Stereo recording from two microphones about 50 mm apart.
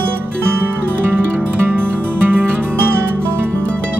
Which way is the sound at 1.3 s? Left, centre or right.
Right.